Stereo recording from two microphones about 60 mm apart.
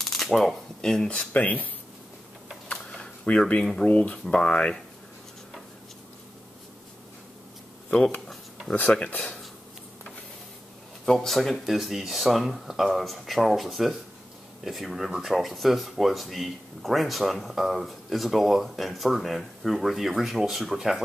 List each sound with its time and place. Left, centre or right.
0.0 s camera: centre
0.7 s speech: centre
1.1 s speech: left
2.7 s a sound: centre
3.8 s speech: left
8.9 s speech: left
9.2 s a sound: centre
11.1 s speech: centre